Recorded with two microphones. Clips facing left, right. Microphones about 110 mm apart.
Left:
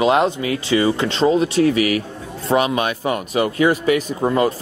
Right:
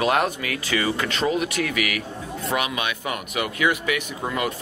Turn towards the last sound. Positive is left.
turn(degrees=35)  # may be behind; listen again after turning